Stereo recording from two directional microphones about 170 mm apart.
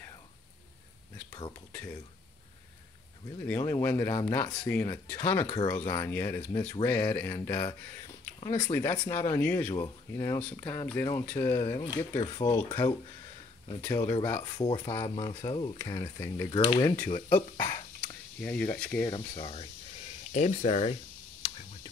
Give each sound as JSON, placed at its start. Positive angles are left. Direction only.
{"t": 3.4, "sound": "speech", "side_deg": 20}
{"t": 8.4, "sound": "speech", "side_deg": 35}
{"t": 8.7, "sound": "speech", "side_deg": 15}
{"t": 16.4, "sound": "speech", "side_deg": 30}
{"t": 18.4, "sound": "speech", "side_deg": 5}
{"t": 19.0, "sound": "speech", "side_deg": 30}